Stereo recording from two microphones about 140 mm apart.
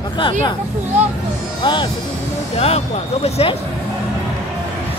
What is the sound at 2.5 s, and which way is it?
Speech, 50° left (ahead or behind).